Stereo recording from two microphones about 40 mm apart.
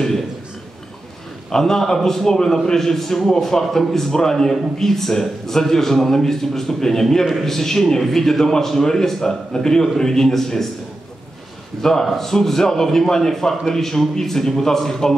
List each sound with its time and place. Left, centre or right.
1.5 s a man's voice: centre
11.8 s a man's voice: centre